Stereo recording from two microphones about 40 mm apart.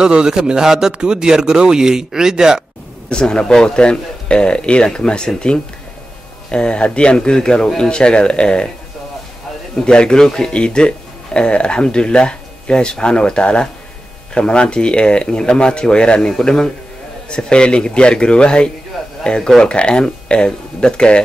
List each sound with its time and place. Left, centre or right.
0.0 s speech: right
3.1 s speech: left
9.8 s speech: centre